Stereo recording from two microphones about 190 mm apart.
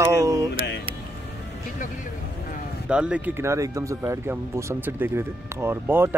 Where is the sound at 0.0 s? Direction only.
15° right (ahead or behind).